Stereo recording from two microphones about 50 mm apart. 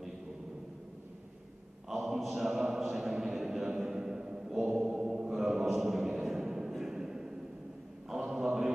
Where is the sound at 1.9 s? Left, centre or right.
Centre.